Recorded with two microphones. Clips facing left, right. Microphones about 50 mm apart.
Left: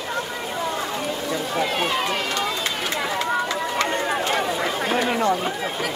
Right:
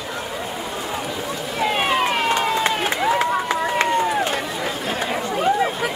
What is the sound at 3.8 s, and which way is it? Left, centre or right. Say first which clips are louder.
Run: right 4 dB; centre.